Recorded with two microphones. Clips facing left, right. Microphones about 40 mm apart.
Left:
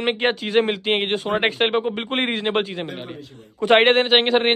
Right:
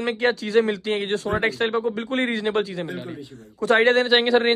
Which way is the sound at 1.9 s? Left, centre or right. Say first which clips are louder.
Left 1 dB; left.